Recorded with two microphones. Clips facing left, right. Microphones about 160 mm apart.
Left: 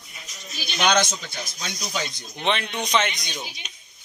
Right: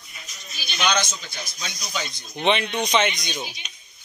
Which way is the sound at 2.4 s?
Centre (ahead or behind).